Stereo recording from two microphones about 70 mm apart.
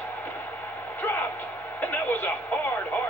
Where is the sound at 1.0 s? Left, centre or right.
Left.